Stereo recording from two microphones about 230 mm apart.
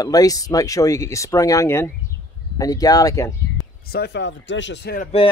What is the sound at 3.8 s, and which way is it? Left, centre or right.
Speech, left.